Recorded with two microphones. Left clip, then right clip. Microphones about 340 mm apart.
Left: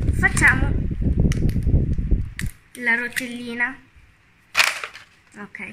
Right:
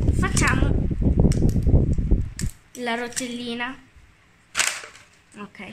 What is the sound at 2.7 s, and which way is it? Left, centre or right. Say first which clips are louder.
Speech: left 6 dB; centre.